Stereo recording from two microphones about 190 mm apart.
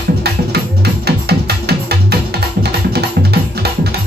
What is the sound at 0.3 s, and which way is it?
Music, 60° right (ahead or behind).